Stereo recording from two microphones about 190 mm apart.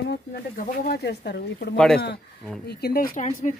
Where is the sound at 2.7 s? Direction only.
55° left (ahead or behind).